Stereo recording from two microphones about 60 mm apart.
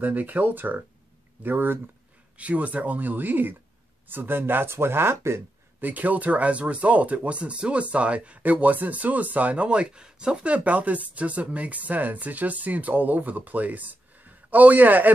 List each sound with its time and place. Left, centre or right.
0.0 s speech: right
2.3 s speech: right
5.1 s speech: right
5.8 s speech: right